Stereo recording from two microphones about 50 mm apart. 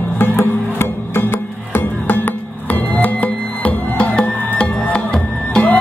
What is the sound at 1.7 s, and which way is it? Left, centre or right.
Music, left.